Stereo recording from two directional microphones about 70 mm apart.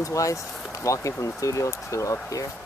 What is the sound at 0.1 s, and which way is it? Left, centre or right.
Speech, left.